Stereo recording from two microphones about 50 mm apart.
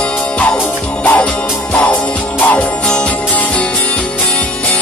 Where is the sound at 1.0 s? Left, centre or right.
Left.